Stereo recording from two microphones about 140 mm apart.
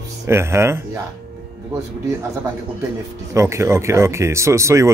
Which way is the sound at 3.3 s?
20° right (ahead or behind).